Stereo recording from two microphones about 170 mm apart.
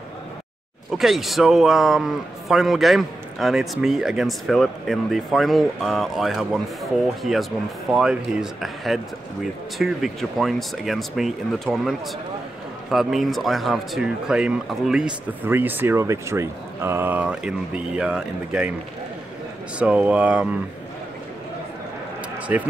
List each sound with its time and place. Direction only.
0.9 s a man's voice: centre (ahead or behind)
12.9 s a man's voice: centre (ahead or behind)
19.8 s speech: 5° right (ahead or behind)
22.5 s speech: 10° right (ahead or behind)